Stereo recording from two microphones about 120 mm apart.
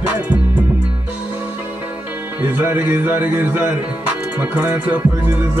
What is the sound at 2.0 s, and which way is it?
Music, 15° right (ahead or behind).